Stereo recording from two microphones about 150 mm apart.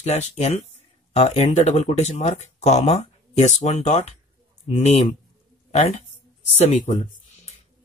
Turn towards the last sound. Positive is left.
turn(degrees=50)  # may be behind; listen again after turning